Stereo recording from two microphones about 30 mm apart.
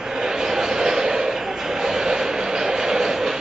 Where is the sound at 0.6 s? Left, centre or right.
Right.